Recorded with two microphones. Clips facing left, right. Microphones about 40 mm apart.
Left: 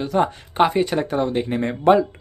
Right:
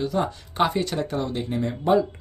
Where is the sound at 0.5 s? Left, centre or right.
Left.